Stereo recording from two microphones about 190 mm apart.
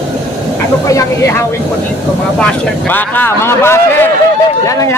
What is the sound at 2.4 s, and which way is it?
Speech, 10° left (ahead or behind).